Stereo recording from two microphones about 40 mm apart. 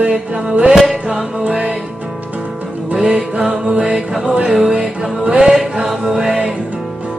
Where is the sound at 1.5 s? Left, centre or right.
Right.